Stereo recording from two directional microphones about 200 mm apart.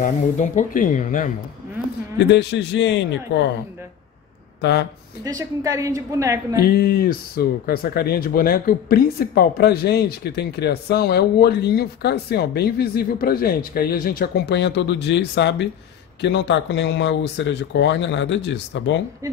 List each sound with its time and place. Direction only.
0.0 s speech: 40° left (ahead or behind)
2.1 s speech: 60° left (ahead or behind)
4.6 s speech: 55° left (ahead or behind)
5.6 s a woman's voice: 15° right (ahead or behind)
6.8 s speech: 50° left (ahead or behind)